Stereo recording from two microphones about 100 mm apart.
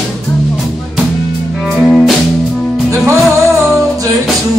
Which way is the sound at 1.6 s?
Centre (ahead or behind).